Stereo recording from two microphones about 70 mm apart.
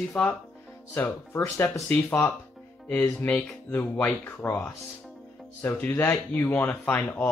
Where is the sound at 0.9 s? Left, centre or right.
Left.